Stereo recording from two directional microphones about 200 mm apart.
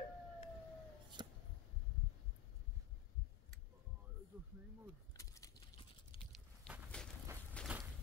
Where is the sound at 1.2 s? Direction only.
20° right (ahead or behind).